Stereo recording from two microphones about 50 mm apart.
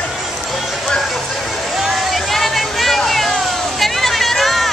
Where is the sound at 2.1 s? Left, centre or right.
Centre.